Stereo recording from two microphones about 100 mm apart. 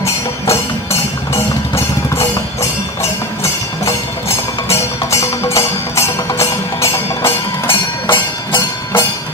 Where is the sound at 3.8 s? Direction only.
30° left (ahead or behind).